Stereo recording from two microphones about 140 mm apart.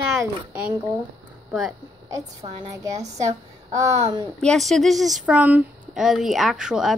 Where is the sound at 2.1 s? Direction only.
25° right (ahead or behind).